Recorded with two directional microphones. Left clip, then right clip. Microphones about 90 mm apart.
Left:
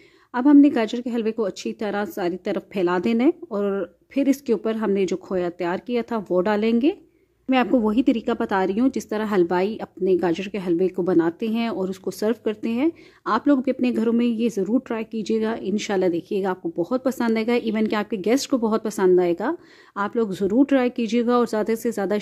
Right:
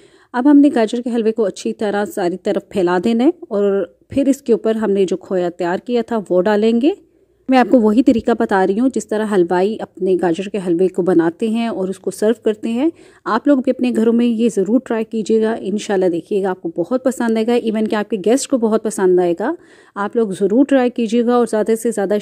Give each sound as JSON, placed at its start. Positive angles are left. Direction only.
{"t": 0.3, "sound": "speech", "side_deg": -40}
{"t": 7.4, "sound": "speech", "side_deg": -45}
{"t": 11.1, "sound": "speech", "side_deg": -50}